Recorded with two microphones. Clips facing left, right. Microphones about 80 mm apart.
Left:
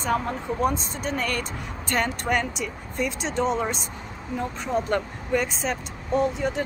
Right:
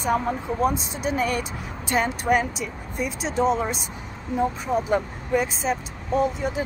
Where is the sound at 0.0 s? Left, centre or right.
Centre.